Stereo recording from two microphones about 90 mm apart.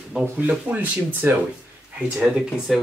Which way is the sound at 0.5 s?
20° right (ahead or behind).